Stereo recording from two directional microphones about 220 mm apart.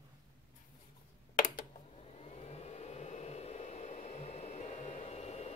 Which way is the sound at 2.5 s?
30° left (ahead or behind).